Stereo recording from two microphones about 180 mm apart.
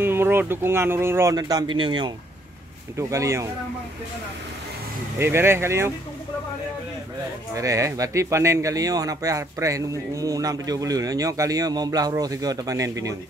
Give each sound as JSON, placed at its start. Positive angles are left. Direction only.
{"t": 0.0, "sound": "speech", "side_deg": -10}
{"t": 5.2, "sound": "speech", "side_deg": -15}
{"t": 7.5, "sound": "speech", "side_deg": -20}